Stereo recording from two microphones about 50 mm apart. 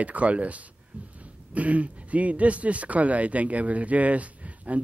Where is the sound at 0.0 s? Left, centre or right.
Right.